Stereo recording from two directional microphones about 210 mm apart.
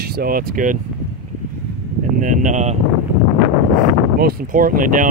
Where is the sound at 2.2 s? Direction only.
40° right (ahead or behind).